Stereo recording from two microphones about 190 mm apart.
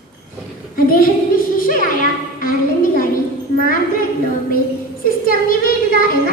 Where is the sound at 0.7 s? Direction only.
50° left (ahead or behind).